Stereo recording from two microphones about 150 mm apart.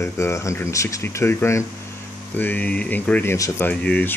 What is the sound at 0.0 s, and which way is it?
Speech, 20° left (ahead or behind).